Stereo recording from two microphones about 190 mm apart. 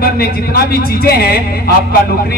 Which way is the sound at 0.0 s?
50° left (ahead or behind).